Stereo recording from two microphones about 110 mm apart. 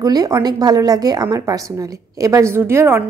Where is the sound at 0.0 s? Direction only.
35° right (ahead or behind).